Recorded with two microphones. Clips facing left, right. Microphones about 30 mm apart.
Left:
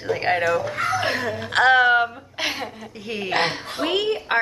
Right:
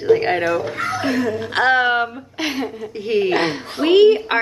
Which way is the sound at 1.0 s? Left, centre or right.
Left.